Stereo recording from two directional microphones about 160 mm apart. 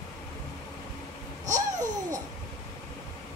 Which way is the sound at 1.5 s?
50° right (ahead or behind).